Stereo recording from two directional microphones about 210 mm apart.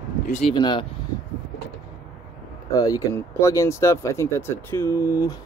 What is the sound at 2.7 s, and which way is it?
Speech, 15° left (ahead or behind).